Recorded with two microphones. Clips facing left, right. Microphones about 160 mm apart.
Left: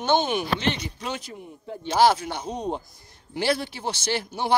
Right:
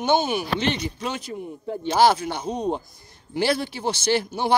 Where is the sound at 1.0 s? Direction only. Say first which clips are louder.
Right 3 dB; 60° right (ahead or behind).